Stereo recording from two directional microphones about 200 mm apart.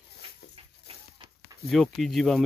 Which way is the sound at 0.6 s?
25° right (ahead or behind).